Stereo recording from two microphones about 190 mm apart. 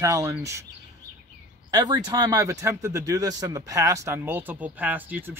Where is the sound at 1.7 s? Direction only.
20° right (ahead or behind).